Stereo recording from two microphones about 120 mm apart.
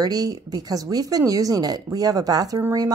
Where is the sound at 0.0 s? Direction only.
30° right (ahead or behind).